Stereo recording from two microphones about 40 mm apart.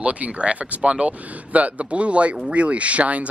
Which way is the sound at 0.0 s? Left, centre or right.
Right.